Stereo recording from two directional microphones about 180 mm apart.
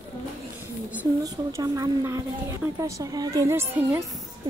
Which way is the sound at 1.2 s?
20° right (ahead or behind).